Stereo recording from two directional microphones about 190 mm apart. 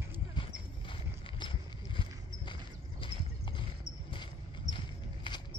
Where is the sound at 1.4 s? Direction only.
25° left (ahead or behind).